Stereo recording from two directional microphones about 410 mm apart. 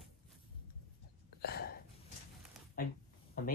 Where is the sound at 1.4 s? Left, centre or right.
Left.